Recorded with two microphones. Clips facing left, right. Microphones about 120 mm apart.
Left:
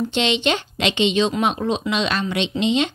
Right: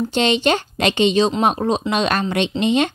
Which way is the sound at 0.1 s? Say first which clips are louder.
Right 3 dB; 45° right (ahead or behind).